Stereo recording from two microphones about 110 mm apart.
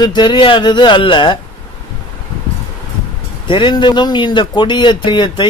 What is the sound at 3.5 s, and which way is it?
Speech, 45° left (ahead or behind).